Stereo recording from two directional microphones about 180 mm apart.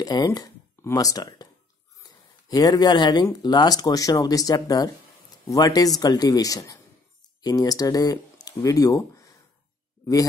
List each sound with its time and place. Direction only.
0.0 s speech: 20° left (ahead or behind)